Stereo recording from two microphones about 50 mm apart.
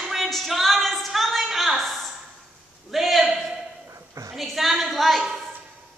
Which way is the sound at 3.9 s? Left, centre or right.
Right.